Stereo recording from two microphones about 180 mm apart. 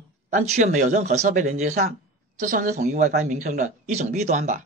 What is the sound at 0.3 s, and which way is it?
A man's voice, 40° right (ahead or behind).